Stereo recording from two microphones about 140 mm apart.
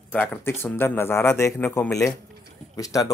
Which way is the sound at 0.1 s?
10° left (ahead or behind).